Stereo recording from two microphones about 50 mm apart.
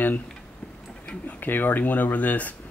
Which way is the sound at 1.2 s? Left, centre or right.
Left.